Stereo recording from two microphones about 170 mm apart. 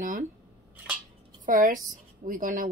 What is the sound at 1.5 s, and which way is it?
Speech, 55° right (ahead or behind).